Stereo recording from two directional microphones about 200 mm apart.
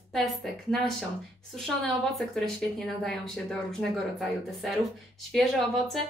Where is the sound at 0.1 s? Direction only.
Centre (ahead or behind).